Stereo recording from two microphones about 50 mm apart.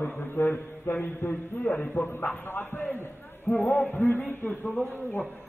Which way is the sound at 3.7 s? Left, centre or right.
Left.